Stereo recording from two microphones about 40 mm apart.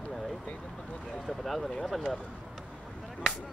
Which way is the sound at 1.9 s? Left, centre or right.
Centre.